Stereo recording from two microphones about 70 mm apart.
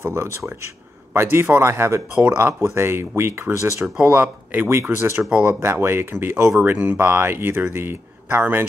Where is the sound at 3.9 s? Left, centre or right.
Right.